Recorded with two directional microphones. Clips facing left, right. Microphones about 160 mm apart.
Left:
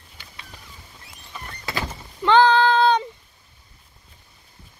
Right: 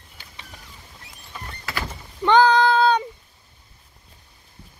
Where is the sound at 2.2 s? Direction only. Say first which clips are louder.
Even; 15° right (ahead or behind).